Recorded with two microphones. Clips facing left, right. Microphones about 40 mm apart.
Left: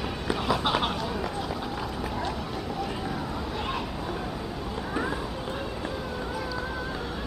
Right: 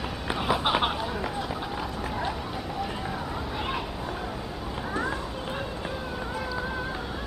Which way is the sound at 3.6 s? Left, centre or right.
Centre.